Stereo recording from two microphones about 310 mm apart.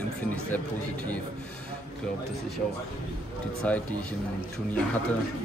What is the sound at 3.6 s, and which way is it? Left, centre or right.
Speech, centre.